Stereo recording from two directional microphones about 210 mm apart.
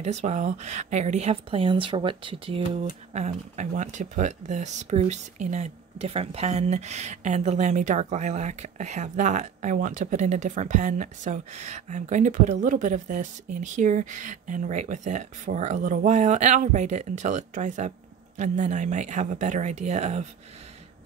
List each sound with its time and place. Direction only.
0.0 s speech: 35° right (ahead or behind)